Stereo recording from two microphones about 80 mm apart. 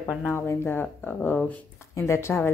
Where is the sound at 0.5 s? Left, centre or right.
Left.